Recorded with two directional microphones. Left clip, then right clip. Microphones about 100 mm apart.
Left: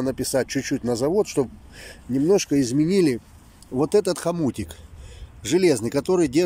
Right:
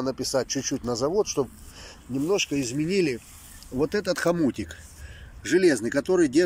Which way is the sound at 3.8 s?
30° left (ahead or behind).